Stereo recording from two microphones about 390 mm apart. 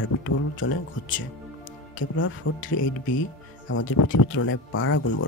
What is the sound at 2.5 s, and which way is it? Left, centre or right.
Speech, left.